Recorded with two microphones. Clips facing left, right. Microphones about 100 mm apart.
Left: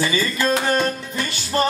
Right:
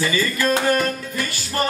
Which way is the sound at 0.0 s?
20° left (ahead or behind).